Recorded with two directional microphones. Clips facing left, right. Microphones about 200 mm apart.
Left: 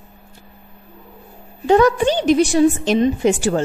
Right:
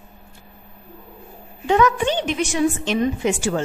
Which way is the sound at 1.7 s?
35° left (ahead or behind).